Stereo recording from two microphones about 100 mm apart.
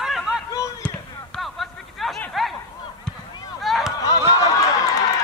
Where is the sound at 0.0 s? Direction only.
5° right (ahead or behind).